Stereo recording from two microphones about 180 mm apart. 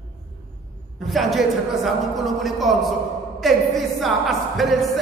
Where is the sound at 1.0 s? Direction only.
Centre (ahead or behind).